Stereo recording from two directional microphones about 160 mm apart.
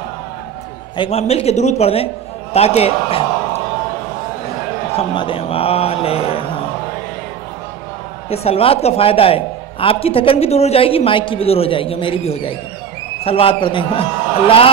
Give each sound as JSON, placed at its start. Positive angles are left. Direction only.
{"t": 0.9, "sound": "a woman's voice", "side_deg": 35}
{"t": 2.5, "sound": "a sound", "side_deg": 40}
{"t": 4.9, "sound": "a woman's voice", "side_deg": 35}
{"t": 8.3, "sound": "a woman's voice", "side_deg": 40}